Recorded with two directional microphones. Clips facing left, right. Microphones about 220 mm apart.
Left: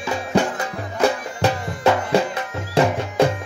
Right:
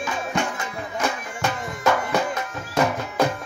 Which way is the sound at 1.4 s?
35° left (ahead or behind).